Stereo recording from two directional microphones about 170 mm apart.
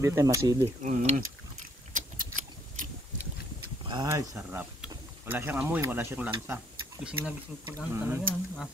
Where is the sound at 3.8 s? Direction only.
30° right (ahead or behind).